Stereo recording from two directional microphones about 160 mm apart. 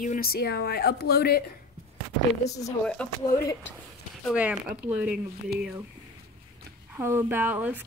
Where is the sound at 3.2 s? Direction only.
20° left (ahead or behind).